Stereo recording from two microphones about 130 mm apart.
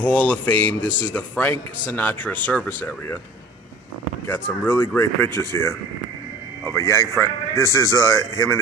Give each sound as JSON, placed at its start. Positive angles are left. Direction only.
{"t": 0.0, "sound": "speech", "side_deg": 10}
{"t": 4.3, "sound": "a man's voice", "side_deg": 15}